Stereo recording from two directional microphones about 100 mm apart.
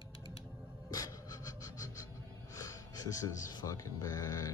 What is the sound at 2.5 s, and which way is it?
Speech, 35° left (ahead or behind).